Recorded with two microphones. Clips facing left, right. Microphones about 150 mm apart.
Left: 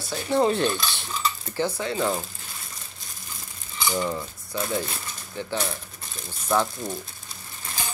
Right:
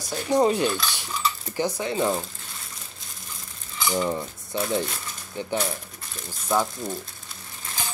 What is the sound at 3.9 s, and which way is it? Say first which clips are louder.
Cutlery: right 3 dB; 20° right (ahead or behind).